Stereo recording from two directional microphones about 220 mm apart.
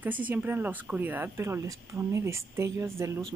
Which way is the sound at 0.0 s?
10° right (ahead or behind).